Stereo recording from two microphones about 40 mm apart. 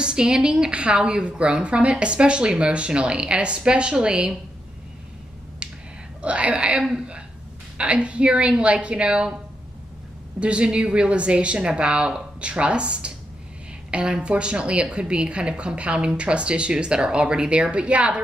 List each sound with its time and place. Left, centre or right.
0.0 s a woman's voice: right
6.2 s a woman's voice: right
10.4 s a woman's voice: right